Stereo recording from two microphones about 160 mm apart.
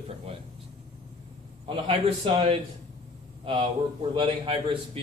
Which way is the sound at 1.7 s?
35° right (ahead or behind).